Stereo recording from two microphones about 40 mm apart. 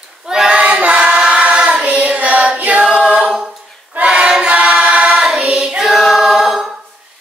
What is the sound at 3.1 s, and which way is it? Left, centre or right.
A capella, centre.